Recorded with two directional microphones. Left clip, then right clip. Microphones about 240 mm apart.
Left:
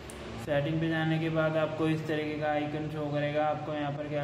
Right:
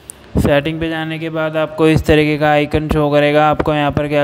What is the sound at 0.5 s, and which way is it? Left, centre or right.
Speech, right.